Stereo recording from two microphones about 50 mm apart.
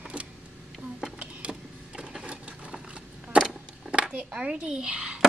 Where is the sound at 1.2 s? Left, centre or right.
Right.